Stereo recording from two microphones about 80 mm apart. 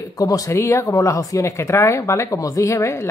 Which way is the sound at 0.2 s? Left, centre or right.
Left.